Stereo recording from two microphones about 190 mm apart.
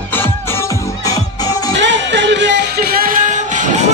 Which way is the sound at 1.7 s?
75° right (ahead or behind).